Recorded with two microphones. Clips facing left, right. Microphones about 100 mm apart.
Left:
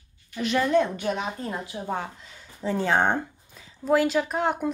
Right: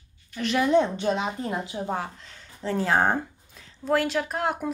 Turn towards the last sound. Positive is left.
turn(degrees=0)  # may be behind; listen again after turning